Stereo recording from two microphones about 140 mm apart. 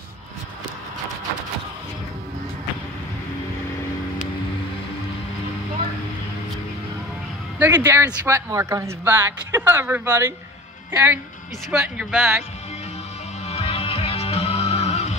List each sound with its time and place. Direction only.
7.5 s speech: 15° right (ahead or behind)
13.5 s music: 45° left (ahead or behind)